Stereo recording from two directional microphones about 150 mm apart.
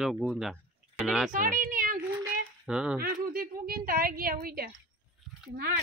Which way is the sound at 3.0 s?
80° right.